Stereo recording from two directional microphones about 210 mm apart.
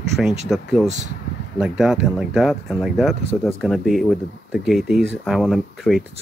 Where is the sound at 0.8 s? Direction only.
35° right (ahead or behind).